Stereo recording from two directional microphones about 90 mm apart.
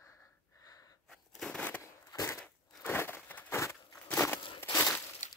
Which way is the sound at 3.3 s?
25° left (ahead or behind).